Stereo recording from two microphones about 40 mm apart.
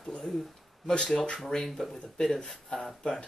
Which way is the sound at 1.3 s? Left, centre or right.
Centre.